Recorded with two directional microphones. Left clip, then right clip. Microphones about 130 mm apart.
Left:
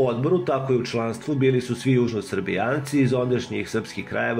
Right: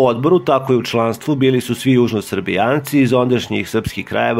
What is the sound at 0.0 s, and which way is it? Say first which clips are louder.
Speech: right 8 dB; 50° right (ahead or behind).